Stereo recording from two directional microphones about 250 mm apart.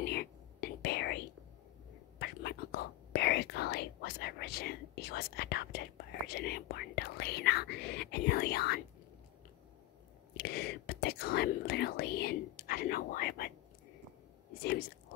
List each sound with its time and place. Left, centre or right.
0.0 s whispering: left
10.3 s whispering: left
14.6 s whispering: left